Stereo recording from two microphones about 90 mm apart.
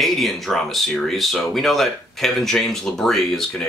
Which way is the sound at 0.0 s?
Centre (ahead or behind).